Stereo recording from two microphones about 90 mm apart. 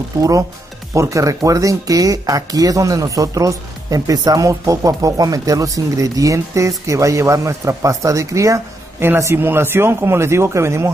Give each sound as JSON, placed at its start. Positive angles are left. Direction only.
{"t": 0.2, "sound": "speech", "side_deg": -40}
{"t": 9.0, "sound": "speech", "side_deg": -25}